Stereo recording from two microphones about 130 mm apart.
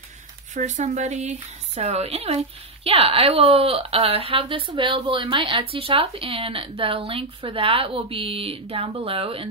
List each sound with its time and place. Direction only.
0.6 s a woman's voice: 65° right (ahead or behind); by 9.5 s 45° right (ahead or behind)